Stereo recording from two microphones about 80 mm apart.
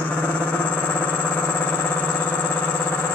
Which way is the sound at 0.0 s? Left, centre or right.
Centre.